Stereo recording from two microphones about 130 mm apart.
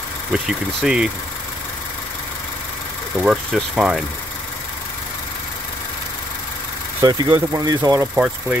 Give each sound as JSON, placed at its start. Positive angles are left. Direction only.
{"t": 0.3, "sound": "speech", "side_deg": -5}
{"t": 3.2, "sound": "speech", "side_deg": -5}
{"t": 7.0, "sound": "speech", "side_deg": -30}